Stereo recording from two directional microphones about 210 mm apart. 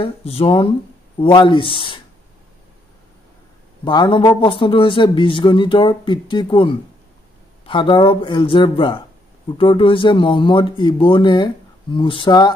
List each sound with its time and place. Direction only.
0.0 s speech: 25° left (ahead or behind)
3.8 s speech: 20° left (ahead or behind)